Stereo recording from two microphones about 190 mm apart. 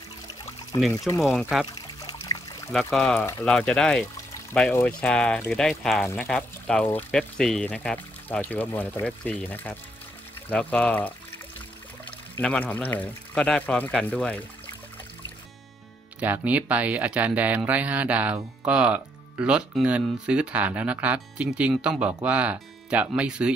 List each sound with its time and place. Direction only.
0.7 s speech: 25° left (ahead or behind)
1.1 s speech: centre (ahead or behind)
1.8 s pour: 20° left (ahead or behind)
2.7 s speech: centre (ahead or behind)
16.2 s speech: 10° right (ahead or behind)